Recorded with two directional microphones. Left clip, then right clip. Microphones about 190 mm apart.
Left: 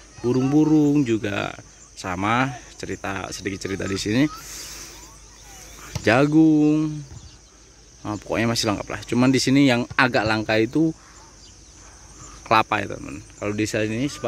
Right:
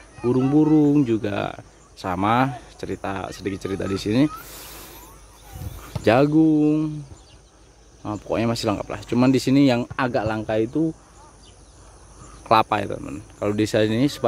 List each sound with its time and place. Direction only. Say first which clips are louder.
0.2 s speech: right 1 dB; centre (ahead or behind)
4.5 s a sound: left 3 dB; 15° right (ahead or behind)
6.0 s speech: even; centre (ahead or behind)
8.0 s speech: even; centre (ahead or behind); by 10.9 s 20° left (ahead or behind)
12.4 s speech: right 1 dB; 5° right (ahead or behind); by 14.2 s 20° right (ahead or behind)